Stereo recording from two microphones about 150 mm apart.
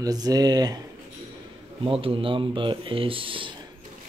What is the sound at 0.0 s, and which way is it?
Speech, 25° right (ahead or behind).